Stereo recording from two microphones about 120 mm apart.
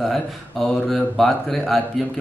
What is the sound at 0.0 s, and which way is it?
Speech, centre (ahead or behind).